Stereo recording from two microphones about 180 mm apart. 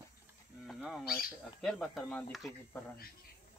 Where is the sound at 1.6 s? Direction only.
Centre (ahead or behind).